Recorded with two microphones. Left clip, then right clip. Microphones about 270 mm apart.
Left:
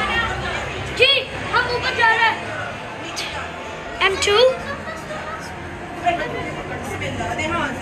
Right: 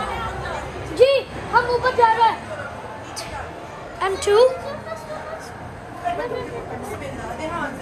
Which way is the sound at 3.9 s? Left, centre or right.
Centre.